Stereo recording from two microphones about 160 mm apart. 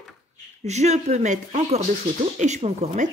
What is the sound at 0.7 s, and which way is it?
Speech, 45° right (ahead or behind).